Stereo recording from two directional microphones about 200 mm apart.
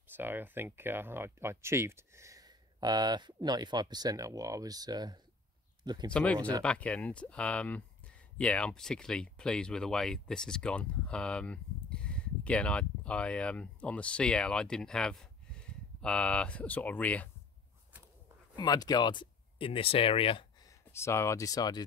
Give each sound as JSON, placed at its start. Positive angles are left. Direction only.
{"t": 0.1, "sound": "speech", "side_deg": -10}
{"t": 6.1, "sound": "speech", "side_deg": 5}
{"t": 18.6, "sound": "speech", "side_deg": 20}
{"t": 20.9, "sound": "speech", "side_deg": 15}